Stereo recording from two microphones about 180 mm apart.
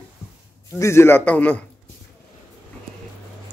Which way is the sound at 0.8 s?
15° left (ahead or behind).